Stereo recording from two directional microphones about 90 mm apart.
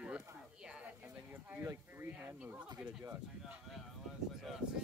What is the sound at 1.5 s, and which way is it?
Speech, 25° right (ahead or behind).